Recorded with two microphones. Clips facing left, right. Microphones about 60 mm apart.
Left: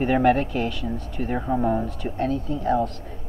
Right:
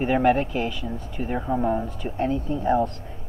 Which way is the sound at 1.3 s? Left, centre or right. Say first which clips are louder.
Left 1 dB; centre.